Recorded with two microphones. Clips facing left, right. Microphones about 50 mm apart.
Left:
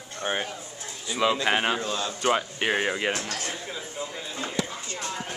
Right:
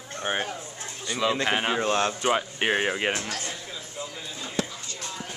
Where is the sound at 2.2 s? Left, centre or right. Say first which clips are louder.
Even; centre.